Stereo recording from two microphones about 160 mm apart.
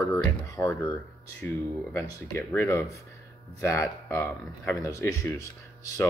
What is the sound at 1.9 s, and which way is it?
Speech, 15° left (ahead or behind).